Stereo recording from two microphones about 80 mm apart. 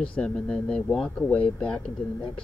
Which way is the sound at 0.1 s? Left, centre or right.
Centre.